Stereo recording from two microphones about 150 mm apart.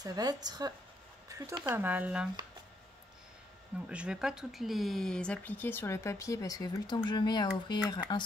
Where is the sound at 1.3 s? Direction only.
20° right (ahead or behind).